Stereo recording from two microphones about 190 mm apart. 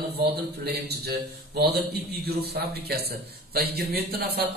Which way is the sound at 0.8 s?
55° right (ahead or behind).